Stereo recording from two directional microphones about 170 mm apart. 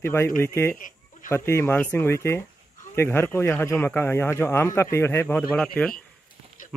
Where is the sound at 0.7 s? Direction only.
50° left (ahead or behind).